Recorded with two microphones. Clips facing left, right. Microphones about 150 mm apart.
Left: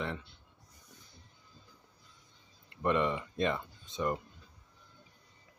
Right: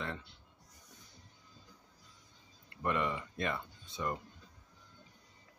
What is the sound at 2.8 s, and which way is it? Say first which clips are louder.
Speech: left 4 dB; 20° left (ahead or behind).